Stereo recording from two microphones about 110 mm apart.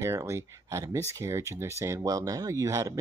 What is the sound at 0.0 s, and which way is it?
Speech, 25° right (ahead or behind).